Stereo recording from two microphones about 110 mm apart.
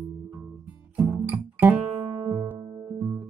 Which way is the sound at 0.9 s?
25° right (ahead or behind).